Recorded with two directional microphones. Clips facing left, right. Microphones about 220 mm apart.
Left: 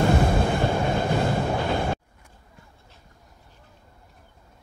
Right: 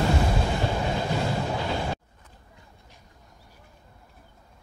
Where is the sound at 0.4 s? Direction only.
55° left (ahead or behind).